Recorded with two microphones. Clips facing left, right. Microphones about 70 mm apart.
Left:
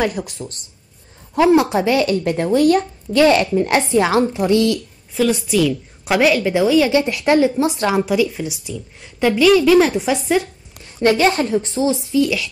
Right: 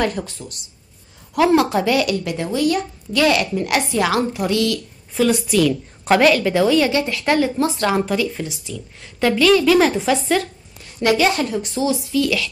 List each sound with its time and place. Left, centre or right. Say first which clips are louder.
0.0 s a woman's voice: left 1 dB; centre
0.4 s speech: left 4 dB; left
1.3 s speech: left 2 dB; left
5.1 s a woman's voice: even; centre
6.9 s a woman's voice: left 3 dB; left
10.8 s speech: left 2 dB; left